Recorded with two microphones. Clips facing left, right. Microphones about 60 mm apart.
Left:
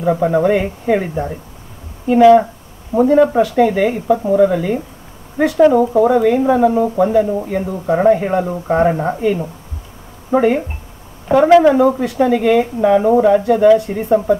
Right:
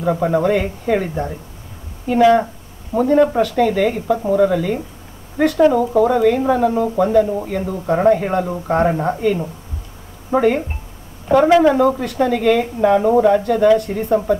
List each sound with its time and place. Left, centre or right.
0.0 s speech: centre
11.6 s speech: centre